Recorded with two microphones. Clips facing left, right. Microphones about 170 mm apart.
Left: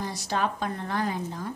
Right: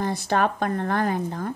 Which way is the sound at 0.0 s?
55° right (ahead or behind).